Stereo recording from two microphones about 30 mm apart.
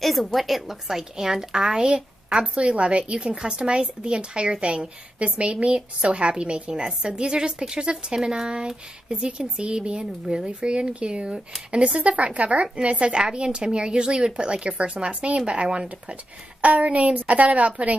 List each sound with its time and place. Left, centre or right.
0.0 s a woman's voice: centre; by 2.4 s right
2.4 s a woman's voice: right
16.6 s a woman's voice: right